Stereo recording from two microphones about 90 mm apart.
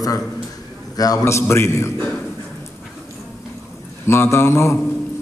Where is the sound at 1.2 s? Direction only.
30° left (ahead or behind).